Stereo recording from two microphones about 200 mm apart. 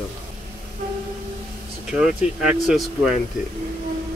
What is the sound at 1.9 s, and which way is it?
Speech, 5° right (ahead or behind).